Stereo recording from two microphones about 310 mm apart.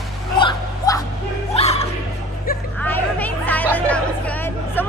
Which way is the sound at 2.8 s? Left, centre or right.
Centre.